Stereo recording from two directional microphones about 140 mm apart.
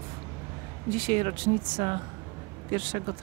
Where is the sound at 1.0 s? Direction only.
40° right (ahead or behind).